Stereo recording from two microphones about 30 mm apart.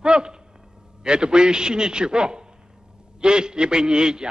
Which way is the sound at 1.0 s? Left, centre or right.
Right.